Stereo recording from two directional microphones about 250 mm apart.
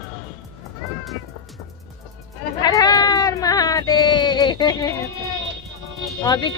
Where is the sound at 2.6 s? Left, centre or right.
Centre.